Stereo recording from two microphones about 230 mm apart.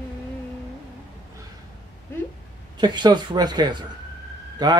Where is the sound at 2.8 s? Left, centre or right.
Centre.